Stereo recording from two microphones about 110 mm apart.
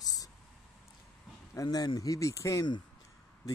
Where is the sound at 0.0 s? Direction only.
35° left (ahead or behind).